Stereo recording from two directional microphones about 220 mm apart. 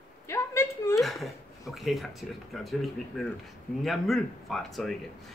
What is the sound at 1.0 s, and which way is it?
Speech, centre (ahead or behind).